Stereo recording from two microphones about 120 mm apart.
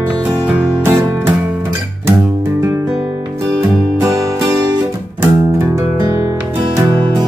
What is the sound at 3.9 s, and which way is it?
Music, 30° right (ahead or behind).